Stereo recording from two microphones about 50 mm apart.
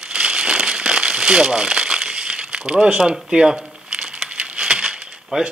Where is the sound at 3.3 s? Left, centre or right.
Centre.